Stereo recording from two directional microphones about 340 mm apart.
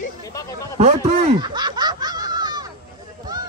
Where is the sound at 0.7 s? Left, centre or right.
Centre.